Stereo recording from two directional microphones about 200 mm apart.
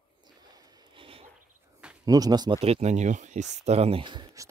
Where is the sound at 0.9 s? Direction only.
25° right (ahead or behind).